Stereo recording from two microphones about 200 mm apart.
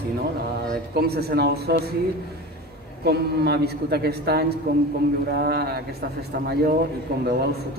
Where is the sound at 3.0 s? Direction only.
55° right (ahead or behind).